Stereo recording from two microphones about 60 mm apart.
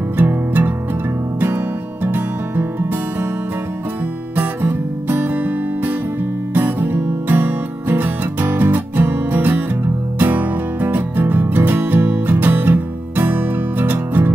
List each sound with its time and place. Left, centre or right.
0.2 s music: right
2.0 s music: right
4.4 s music: right